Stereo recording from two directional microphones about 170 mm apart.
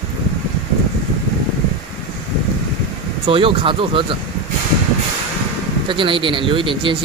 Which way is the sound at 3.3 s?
30° right (ahead or behind).